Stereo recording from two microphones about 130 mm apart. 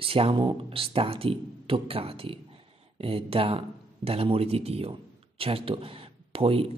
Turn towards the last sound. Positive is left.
turn(degrees=-45)  # may be behind; listen again after turning